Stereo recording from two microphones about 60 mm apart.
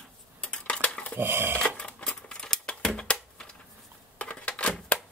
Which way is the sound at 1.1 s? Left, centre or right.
Right.